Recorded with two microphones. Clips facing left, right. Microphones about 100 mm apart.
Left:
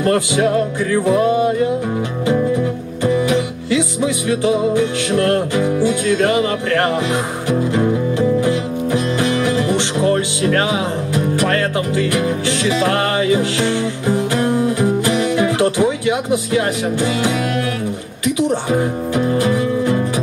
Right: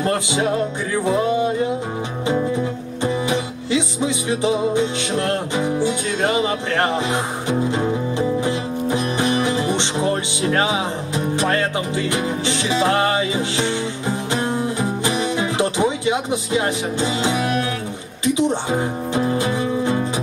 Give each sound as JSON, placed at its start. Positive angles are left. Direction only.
{"t": 0.0, "sound": "music", "side_deg": -20}
{"t": 3.0, "sound": "music", "side_deg": -20}
{"t": 8.4, "sound": "music", "side_deg": -20}
{"t": 18.2, "sound": "speech", "side_deg": -20}